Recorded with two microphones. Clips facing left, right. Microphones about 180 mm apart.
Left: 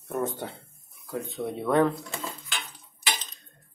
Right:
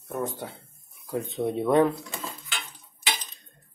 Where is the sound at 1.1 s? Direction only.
20° right (ahead or behind).